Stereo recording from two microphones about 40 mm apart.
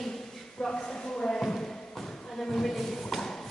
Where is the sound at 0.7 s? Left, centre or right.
Centre.